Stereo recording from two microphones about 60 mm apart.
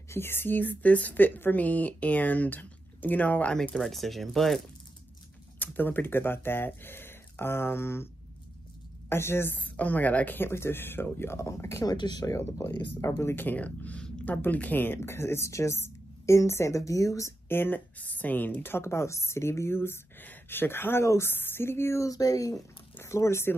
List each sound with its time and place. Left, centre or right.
0.1 s speech: left
3.7 s speech: centre
5.6 s speech: left
9.1 s speech: left
9.6 s speech: left
11.3 s speech: left
11.8 s speech: left
12.5 s speech: left
13.5 s speech: left
17.5 s speech: left
22.0 s speech: left
23.0 s speech: left